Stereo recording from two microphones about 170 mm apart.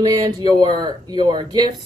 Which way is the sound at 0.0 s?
25° right (ahead or behind).